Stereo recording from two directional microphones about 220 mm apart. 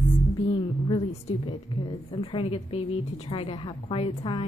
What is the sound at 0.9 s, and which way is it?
A woman's voice, 25° left (ahead or behind).